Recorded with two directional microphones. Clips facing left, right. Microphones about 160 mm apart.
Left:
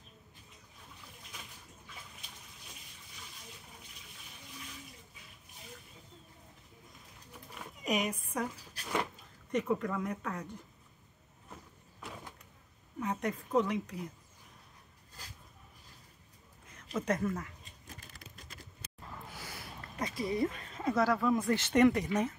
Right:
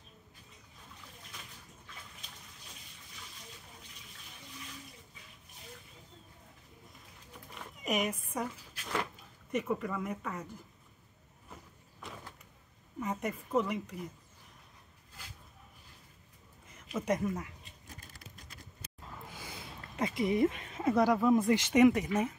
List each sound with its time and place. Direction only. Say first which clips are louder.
7.5 s a sound: even; centre (ahead or behind)
9.5 s speech: left 1 dB; 5° right (ahead or behind)
13.0 s speech: left 1 dB; 5° right (ahead or behind)
16.7 s speech: right 1 dB; 5° right (ahead or behind)
19.2 s a sound: even; 20° right (ahead or behind)
20.8 s speech: right 3 dB; 15° right (ahead or behind)